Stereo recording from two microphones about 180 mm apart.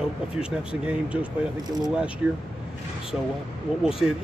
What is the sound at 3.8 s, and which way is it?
Speech, 5° right (ahead or behind).